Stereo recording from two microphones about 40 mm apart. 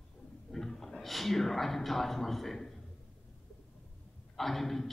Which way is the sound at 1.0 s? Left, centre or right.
Centre.